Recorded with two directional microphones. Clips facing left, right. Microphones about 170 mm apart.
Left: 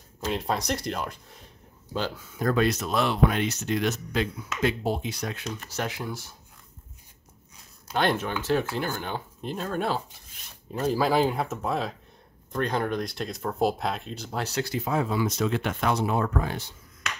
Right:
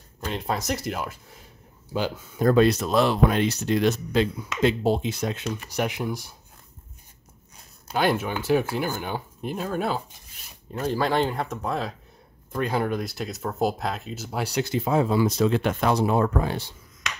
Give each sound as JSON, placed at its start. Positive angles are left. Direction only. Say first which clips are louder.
{"t": 0.2, "sound": "speech", "louder": "even", "side_deg": 0}
{"t": 2.3, "sound": "speech", "louder": "right 6 dB", "side_deg": -30}
{"t": 5.6, "sound": "speech", "louder": "right 5 dB", "side_deg": -15}
{"t": 7.9, "sound": "speech", "louder": "right 2 dB", "side_deg": -5}